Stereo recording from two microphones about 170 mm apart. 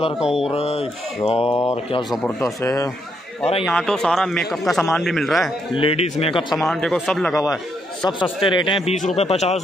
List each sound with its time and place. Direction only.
0.2 s a man's voice: 5° right (ahead or behind)
0.5 s mantra: 35° left (ahead or behind)
1.5 s speech: 15° left (ahead or behind)
2.0 s a man's voice: 5° left (ahead or behind)
2.6 s speech: 20° left (ahead or behind)
3.6 s a man's voice: 5° left (ahead or behind)
5.8 s mantra: 35° left (ahead or behind)
6.5 s a man's voice: centre (ahead or behind)
8.0 s a man's voice: 30° left (ahead or behind)
8.9 s mantra: 40° left (ahead or behind)